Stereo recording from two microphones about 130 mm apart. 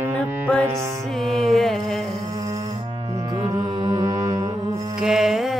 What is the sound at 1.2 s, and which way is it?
Music, centre (ahead or behind).